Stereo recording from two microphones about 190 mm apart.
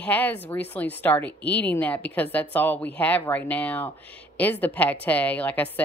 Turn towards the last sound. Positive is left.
turn(degrees=10)  # may be behind; listen again after turning